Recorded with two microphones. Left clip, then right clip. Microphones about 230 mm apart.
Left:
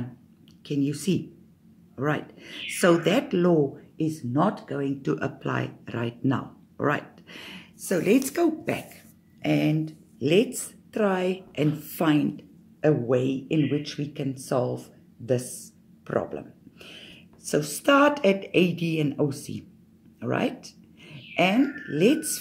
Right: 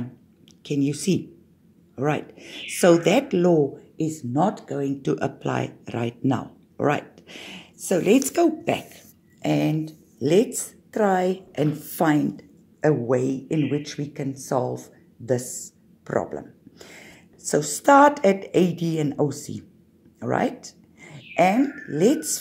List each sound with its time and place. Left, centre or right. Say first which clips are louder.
0.7 s a woman's voice: right 3 dB; centre
20.2 s a sound: right 3 dB; centre
21.7 s a woman's voice: right 2 dB; centre